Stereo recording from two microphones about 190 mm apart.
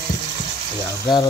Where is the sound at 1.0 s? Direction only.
20° left (ahead or behind).